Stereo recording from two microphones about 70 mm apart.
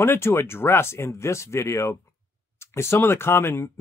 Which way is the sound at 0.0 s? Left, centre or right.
Left.